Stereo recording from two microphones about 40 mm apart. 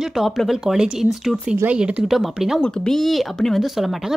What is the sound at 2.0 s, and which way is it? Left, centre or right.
Speech, centre.